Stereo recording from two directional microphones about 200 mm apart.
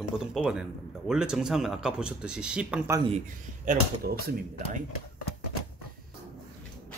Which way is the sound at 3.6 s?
50° right (ahead or behind).